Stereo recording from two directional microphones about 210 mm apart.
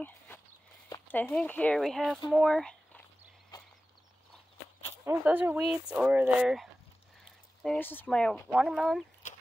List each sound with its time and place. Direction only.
0.8 s speech: 10° left (ahead or behind)
3.5 s a sound: 20° left (ahead or behind)
5.0 s speech: 5° right (ahead or behind)